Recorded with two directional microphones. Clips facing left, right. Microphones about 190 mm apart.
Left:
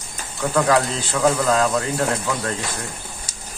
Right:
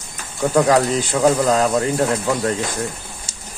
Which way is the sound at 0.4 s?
25° right (ahead or behind).